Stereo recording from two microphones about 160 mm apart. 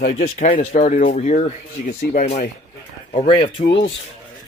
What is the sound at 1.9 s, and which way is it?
Speech, 65° left (ahead or behind).